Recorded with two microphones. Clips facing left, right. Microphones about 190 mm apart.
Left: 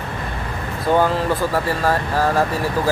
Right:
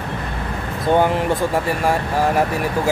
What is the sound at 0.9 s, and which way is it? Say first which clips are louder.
Speech: right 1 dB; 20° right (ahead or behind).